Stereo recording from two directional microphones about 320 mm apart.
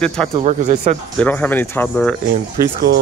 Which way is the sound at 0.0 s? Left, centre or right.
Centre.